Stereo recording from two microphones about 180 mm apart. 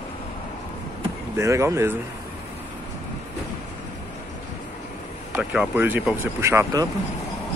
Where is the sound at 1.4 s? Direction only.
15° right (ahead or behind).